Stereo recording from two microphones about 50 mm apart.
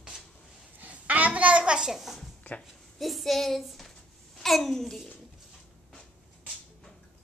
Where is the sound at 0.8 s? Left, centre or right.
Right.